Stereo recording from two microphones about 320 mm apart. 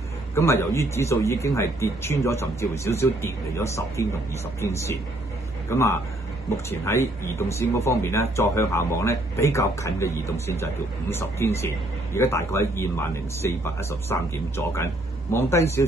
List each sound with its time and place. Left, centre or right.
0.3 s a man's voice: centre